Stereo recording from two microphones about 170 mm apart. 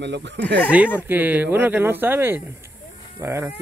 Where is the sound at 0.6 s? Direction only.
10° right (ahead or behind).